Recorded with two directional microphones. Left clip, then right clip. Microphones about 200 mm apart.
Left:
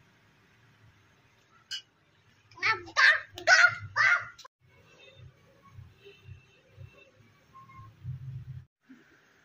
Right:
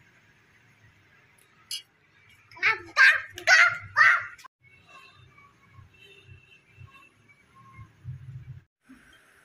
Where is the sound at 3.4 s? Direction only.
40° left (ahead or behind).